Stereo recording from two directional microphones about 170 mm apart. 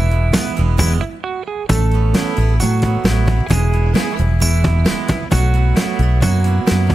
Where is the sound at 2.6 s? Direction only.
Centre (ahead or behind).